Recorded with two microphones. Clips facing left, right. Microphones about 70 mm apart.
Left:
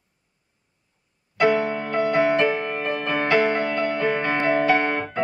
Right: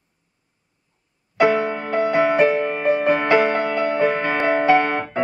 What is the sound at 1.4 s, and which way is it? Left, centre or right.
Music, right.